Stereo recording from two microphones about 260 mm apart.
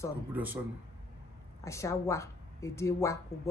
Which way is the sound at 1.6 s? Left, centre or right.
Centre.